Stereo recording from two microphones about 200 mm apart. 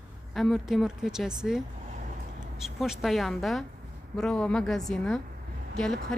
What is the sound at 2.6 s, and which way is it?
A woman's voice, centre (ahead or behind).